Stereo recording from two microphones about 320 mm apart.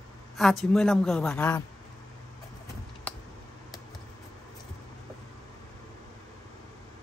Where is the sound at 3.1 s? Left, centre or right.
Centre.